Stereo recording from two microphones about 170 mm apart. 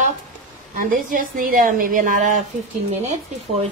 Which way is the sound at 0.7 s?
55° right (ahead or behind).